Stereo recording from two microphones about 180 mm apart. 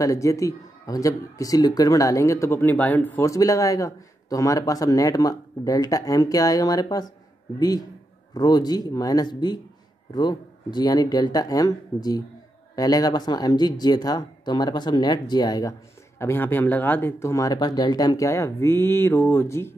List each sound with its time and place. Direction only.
0.0 s speech: 20° left (ahead or behind)